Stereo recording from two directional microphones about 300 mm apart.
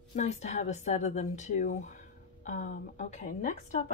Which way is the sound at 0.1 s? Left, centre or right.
Left.